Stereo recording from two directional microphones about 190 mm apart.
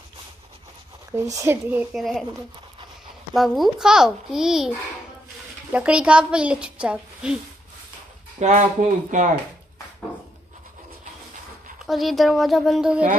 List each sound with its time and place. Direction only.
1.1 s speech: 15° right (ahead or behind); by 2.2 s centre (ahead or behind)
3.3 s a child's voice: centre (ahead or behind)
8.4 s speech: 35° right (ahead or behind)
11.8 s a child's voice: centre (ahead or behind)